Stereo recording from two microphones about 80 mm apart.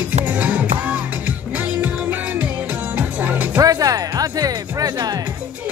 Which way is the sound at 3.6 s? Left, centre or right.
Right.